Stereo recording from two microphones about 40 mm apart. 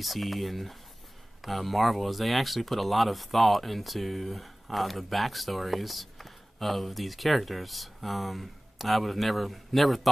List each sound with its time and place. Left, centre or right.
0.0 s speech: centre